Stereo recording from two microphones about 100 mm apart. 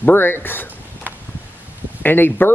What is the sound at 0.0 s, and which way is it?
Speech, 20° left (ahead or behind).